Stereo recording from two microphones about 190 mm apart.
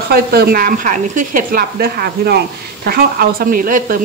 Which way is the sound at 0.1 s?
55° right (ahead or behind).